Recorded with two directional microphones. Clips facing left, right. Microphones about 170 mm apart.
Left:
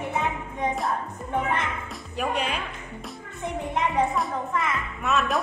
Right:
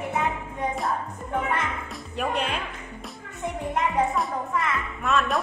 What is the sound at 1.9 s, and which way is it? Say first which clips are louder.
Music: even; 10° left (ahead or behind).